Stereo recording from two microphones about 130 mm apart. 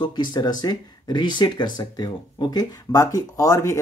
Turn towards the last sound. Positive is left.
turn(degrees=20)  # may be behind; listen again after turning